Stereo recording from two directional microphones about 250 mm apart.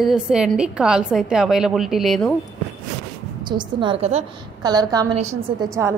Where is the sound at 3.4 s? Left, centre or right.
Centre.